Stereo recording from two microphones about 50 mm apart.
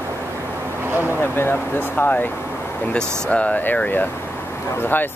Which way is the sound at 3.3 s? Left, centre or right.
Left.